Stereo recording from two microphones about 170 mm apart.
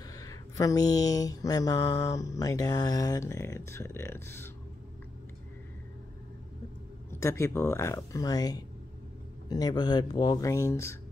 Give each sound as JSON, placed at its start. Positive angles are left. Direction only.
{"t": 0.0, "sound": "mantra", "side_deg": 20}
{"t": 7.2, "sound": "speech", "side_deg": 15}
{"t": 9.5, "sound": "mantra", "side_deg": 25}